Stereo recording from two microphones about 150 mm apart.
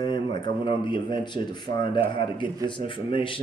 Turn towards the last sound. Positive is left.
turn(degrees=35)  # may be behind; listen again after turning